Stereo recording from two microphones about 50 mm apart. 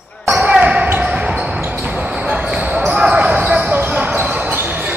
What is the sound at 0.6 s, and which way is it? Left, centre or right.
Basketball bounce, right.